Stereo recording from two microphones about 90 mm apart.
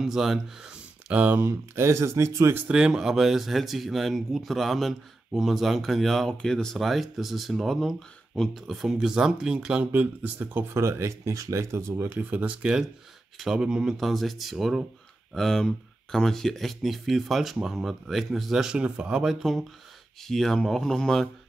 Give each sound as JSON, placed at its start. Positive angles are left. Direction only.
{"t": 0.0, "sound": "speech", "side_deg": -5}
{"t": 1.4, "sound": "speech", "side_deg": -30}
{"t": 2.7, "sound": "speech", "side_deg": -10}
{"t": 10.7, "sound": "speech", "side_deg": -30}
{"t": 20.2, "sound": "speech", "side_deg": 5}